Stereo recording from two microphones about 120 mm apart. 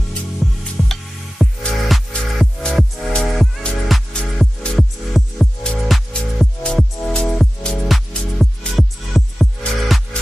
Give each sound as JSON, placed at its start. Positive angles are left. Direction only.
{"t": 0.4, "sound": "music", "side_deg": 0}